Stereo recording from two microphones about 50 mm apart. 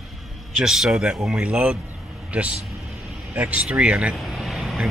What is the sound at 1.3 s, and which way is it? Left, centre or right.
Speech, right.